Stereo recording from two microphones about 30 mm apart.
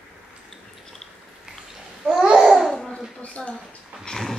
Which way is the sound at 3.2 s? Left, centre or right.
Left.